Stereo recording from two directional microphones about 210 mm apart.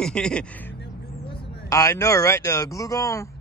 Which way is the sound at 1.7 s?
15° left (ahead or behind).